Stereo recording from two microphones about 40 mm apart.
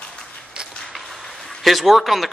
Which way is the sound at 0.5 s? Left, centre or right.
Right.